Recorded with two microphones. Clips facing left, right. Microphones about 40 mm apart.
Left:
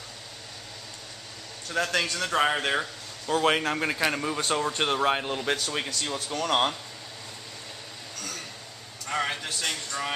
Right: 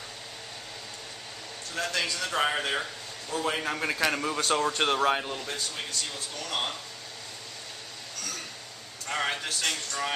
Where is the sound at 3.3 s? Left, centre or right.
Left.